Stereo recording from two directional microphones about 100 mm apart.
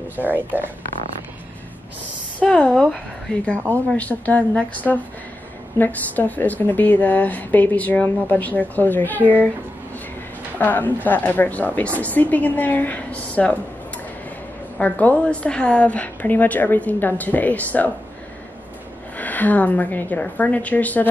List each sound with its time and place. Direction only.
0.1 s speech: 15° right (ahead or behind)
2.4 s a woman's voice: 10° left (ahead or behind)
3.7 s a woman's voice: 15° left (ahead or behind)
10.6 s a woman's voice: 15° left (ahead or behind)
14.8 s a woman's voice: 15° left (ahead or behind)
19.1 s a woman's voice: 15° left (ahead or behind)